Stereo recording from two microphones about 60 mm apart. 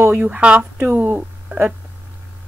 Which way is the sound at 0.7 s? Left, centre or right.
Right.